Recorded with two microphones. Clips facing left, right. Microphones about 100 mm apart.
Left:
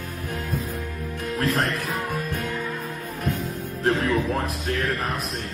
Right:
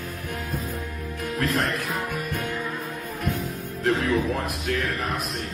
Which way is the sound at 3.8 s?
30° left (ahead or behind).